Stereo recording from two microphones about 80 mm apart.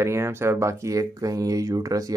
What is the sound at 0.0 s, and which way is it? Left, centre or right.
Speech, right.